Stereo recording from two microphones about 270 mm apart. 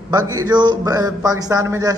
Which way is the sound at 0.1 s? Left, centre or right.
Centre.